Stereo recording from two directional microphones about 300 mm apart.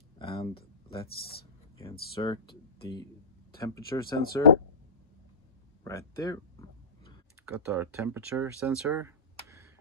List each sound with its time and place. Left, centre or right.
0.2 s a sound: centre
1.8 s speech: centre
5.9 s speech: centre
7.4 s speech: centre